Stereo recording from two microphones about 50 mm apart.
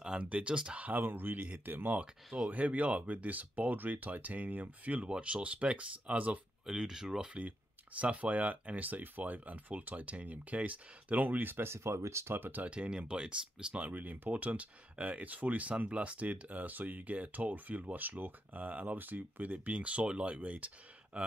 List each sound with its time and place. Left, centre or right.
0.2 s speech: right
0.8 s speech: right
2.5 s speech: right
6.6 s speech: centre
7.3 s speech: right
12.4 s speech: right
12.6 s speech: right
13.9 s speech: right